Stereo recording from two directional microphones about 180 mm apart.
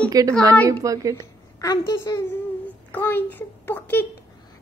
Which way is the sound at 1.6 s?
20° left (ahead or behind).